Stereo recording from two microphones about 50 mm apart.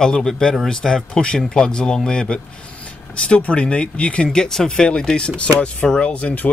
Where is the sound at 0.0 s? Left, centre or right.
Centre.